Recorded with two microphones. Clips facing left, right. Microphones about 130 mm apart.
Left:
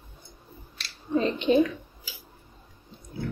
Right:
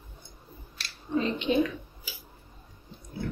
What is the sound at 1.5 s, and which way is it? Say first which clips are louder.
Speech: left 5 dB; 45° left (ahead or behind).